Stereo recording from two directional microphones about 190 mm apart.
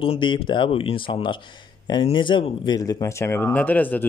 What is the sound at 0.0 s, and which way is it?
Speech, 25° left (ahead or behind).